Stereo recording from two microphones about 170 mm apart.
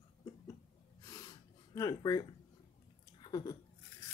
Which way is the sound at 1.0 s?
20° left (ahead or behind).